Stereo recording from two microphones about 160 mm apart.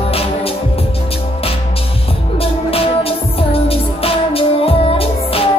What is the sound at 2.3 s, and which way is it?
Music, 35° left (ahead or behind).